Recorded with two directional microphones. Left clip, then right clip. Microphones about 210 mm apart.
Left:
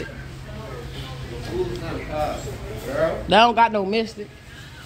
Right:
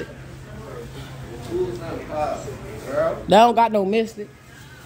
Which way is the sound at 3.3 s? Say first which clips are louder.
Right 1 dB; 45° right (ahead or behind).